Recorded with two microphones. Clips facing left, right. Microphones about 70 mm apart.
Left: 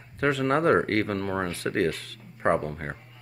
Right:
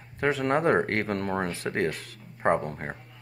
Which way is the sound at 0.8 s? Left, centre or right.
Right.